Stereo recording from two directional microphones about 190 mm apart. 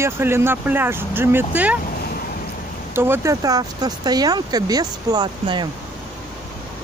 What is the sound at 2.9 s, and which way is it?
Speech, 10° right (ahead or behind).